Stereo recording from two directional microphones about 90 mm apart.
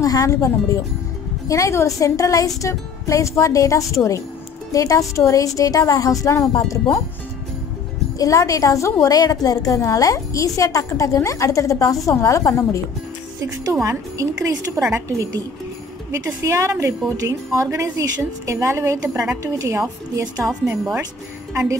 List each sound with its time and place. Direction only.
0.0 s a woman's voice: 40° left (ahead or behind)
8.2 s a woman's voice: 40° left (ahead or behind)
13.8 s a woman's voice: 35° right (ahead or behind)